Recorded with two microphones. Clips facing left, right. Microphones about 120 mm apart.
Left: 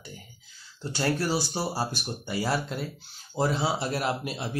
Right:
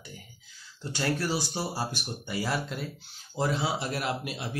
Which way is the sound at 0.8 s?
30° left (ahead or behind).